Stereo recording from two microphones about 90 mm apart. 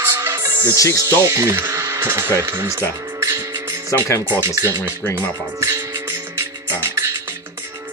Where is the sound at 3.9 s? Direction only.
35° left (ahead or behind).